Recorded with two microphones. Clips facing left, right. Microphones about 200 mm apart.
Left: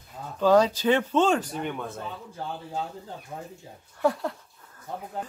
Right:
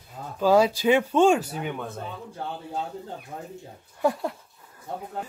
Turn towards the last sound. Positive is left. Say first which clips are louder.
# even
turn(degrees=-15)  # may be behind; listen again after turning